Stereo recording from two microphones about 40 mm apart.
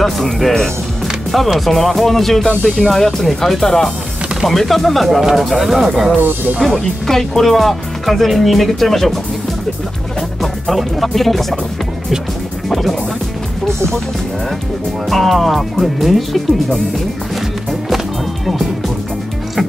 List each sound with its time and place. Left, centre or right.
0.0 s speech: centre
6.1 s speech: right
7.1 s speech: centre
10.4 s speech: centre
12.6 s music: centre
15.0 s speech: centre